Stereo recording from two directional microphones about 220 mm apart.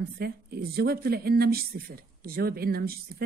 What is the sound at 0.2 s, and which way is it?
A woman's voice, 45° right (ahead or behind).